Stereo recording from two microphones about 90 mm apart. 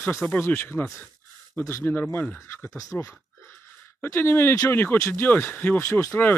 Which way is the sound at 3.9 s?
25° left (ahead or behind).